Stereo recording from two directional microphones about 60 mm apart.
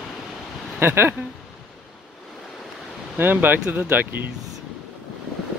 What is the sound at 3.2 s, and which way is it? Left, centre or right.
A man's voice, right.